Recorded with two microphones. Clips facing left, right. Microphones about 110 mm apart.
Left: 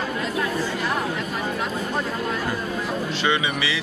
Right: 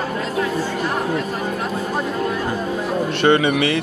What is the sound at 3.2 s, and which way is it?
Speech, 55° right (ahead or behind).